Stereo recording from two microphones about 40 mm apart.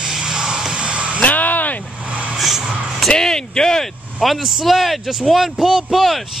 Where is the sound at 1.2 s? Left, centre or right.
Left.